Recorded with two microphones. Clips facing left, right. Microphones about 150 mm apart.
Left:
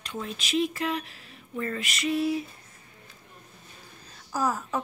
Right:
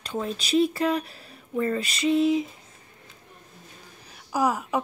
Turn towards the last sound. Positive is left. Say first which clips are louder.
# right 4 dB
turn(degrees=-15)  # may be behind; listen again after turning